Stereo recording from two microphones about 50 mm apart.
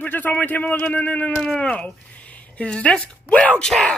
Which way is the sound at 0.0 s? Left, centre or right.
Left.